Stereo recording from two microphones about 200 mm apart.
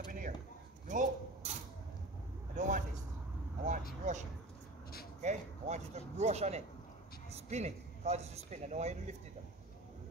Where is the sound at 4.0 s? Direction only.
35° right (ahead or behind).